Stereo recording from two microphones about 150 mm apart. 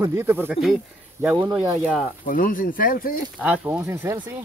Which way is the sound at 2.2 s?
65° left (ahead or behind).